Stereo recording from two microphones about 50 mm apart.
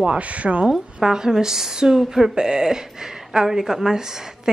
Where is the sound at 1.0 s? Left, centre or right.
Centre.